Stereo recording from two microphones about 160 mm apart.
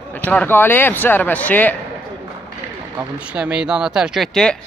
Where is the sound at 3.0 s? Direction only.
5° right (ahead or behind).